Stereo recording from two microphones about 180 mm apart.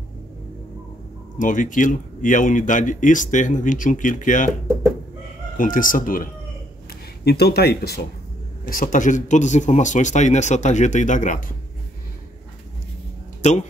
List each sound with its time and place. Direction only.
1.4 s speech: 45° left (ahead or behind)
5.6 s speech: 50° left (ahead or behind)
7.2 s speech: 65° left (ahead or behind)
8.6 s speech: 50° left (ahead or behind)
13.4 s speech: 40° left (ahead or behind)